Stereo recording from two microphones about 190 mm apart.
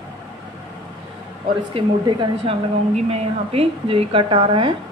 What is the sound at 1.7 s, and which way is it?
A woman's voice, 25° right (ahead or behind).